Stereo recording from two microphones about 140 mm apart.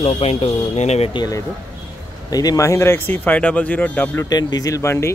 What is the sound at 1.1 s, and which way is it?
Speech, 25° left (ahead or behind).